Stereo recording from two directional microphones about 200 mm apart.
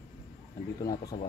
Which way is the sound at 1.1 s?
25° left (ahead or behind).